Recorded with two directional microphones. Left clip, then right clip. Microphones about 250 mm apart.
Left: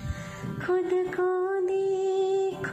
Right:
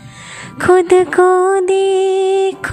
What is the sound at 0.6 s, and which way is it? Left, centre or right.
Mantra, right.